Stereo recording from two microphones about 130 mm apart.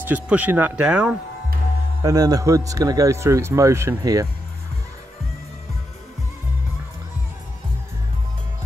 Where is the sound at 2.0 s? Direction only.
30° right (ahead or behind).